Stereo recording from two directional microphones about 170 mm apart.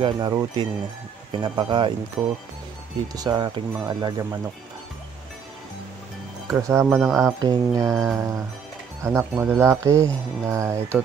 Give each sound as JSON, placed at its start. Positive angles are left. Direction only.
{"t": 0.0, "sound": "speech", "side_deg": -25}
{"t": 2.2, "sound": "speech", "side_deg": 0}
{"t": 3.2, "sound": "speech", "side_deg": -20}
{"t": 6.5, "sound": "speech", "side_deg": -15}
{"t": 6.9, "sound": "speech", "side_deg": 0}
{"t": 7.2, "sound": "speech", "side_deg": -20}